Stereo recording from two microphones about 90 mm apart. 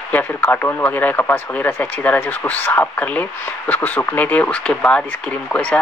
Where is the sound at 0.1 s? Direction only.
20° left (ahead or behind).